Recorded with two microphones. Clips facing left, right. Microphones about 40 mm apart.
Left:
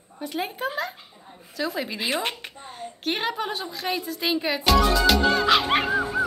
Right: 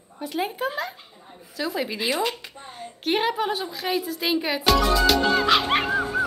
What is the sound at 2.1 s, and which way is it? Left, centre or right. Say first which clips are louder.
Speech: right 1 dB; left.